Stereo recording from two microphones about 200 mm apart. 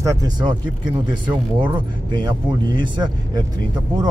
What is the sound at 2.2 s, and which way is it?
Speech, 25° right (ahead or behind).